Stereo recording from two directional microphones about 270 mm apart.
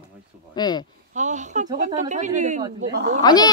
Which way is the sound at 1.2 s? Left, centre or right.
Right.